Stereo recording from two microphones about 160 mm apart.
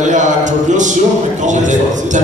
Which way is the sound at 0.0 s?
50° right (ahead or behind).